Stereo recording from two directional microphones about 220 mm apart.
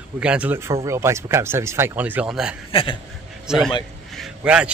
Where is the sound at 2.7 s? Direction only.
25° left (ahead or behind).